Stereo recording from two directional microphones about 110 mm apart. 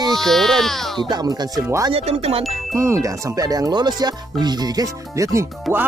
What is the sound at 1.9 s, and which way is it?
Speech, 70° right (ahead or behind).